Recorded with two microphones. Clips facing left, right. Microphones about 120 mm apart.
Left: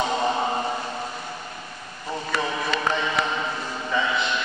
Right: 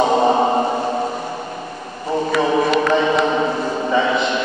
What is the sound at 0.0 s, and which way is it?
Chant, 45° right (ahead or behind).